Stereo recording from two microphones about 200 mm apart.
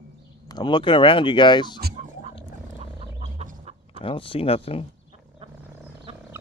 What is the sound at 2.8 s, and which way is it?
Fowl, 30° right (ahead or behind).